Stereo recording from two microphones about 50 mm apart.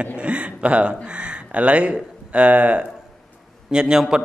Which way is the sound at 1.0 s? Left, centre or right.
Right.